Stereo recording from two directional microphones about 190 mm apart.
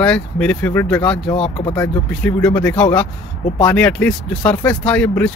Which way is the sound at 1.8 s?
5° left (ahead or behind).